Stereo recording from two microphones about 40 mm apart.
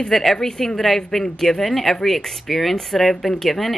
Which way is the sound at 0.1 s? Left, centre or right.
Centre.